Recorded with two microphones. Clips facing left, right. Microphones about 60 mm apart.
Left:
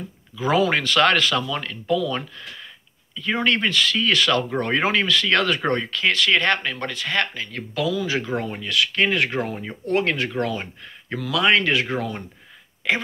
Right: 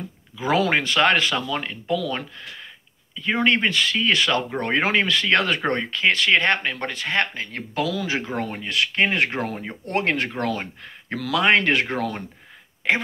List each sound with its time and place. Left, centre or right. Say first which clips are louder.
0.7 s speech: even; right